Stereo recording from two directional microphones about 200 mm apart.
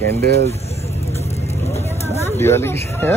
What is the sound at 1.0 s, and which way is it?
Vehicle, 30° left (ahead or behind).